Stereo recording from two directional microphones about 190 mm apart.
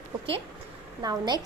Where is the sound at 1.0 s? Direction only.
20° right (ahead or behind).